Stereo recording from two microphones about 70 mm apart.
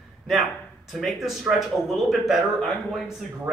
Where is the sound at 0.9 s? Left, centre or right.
Centre.